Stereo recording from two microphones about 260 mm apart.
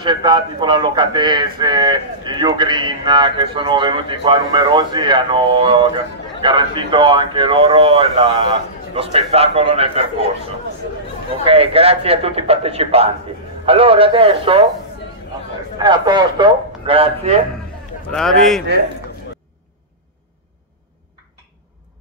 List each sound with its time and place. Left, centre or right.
0.0 s speech: centre
11.4 s speech: right
15.8 s speech: centre
18.1 s a man's voice: centre